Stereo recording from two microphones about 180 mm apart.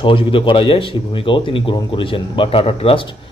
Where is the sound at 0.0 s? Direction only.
30° left (ahead or behind).